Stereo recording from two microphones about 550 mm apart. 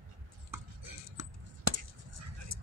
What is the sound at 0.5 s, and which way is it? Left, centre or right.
Chopping, right.